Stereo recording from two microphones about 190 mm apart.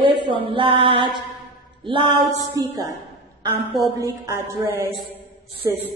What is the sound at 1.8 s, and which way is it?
Speech, 25° right (ahead or behind).